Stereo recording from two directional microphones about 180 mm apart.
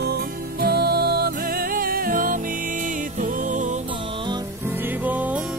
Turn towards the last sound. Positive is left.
turn(degrees=-10)  # may be behind; listen again after turning